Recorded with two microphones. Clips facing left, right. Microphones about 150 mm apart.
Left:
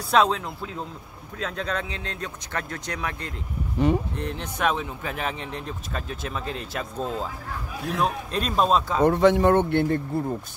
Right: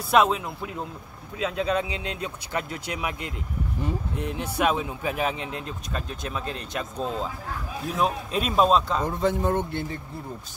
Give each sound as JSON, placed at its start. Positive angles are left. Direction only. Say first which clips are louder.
{"t": 0.1, "sound": "speech", "louder": "even", "side_deg": -5}
{"t": 3.8, "sound": "speech", "louder": "left 10 dB", "side_deg": 75}
{"t": 4.2, "sound": "a man's voice", "louder": "right 1 dB", "side_deg": -10}
{"t": 9.0, "sound": "speech", "louder": "left 7 dB", "side_deg": 70}